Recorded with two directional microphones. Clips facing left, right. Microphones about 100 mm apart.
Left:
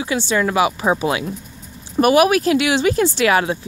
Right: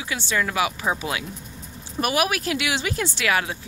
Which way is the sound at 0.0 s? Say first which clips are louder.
Left 7 dB; 30° left (ahead or behind).